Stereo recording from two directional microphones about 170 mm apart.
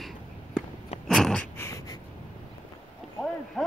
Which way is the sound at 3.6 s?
Centre (ahead or behind).